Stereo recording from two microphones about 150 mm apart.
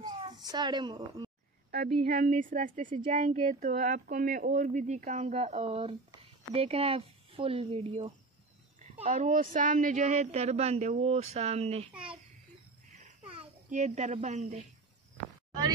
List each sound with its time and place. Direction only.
0.0 s a sound: 30° right (ahead or behind)
2.1 s speech: 60° right (ahead or behind); by 8.1 s 40° right (ahead or behind)
9.0 s speech: 60° right (ahead or behind); by 11.9 s 45° right (ahead or behind)
13.7 s speech: 50° right (ahead or behind)